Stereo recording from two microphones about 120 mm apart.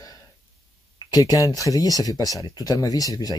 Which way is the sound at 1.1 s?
30° left (ahead or behind).